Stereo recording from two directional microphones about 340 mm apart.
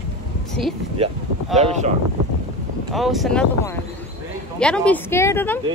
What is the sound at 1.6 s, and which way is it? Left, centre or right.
Speech, centre.